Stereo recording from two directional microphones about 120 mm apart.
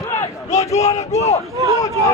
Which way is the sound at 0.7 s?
65° left (ahead or behind).